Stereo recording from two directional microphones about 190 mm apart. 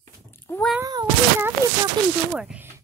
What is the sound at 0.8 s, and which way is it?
Speech, 20° right (ahead or behind).